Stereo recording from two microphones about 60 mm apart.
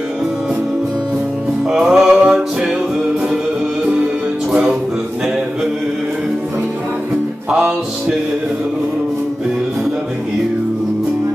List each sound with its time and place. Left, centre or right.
1.7 s music: centre
4.0 s music: centre